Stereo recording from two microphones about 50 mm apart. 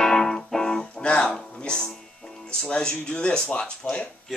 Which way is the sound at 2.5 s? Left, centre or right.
Centre.